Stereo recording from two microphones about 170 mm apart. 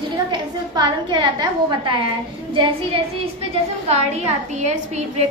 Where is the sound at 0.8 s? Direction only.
25° right (ahead or behind).